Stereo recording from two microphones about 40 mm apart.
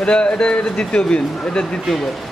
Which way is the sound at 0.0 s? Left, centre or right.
Left.